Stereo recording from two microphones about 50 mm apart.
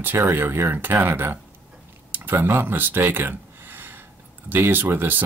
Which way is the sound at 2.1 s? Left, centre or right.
Right.